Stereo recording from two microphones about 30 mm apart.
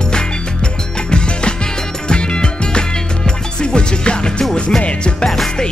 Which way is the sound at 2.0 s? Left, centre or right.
Left.